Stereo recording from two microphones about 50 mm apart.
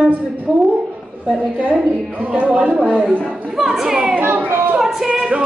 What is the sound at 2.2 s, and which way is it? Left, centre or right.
Speech, right.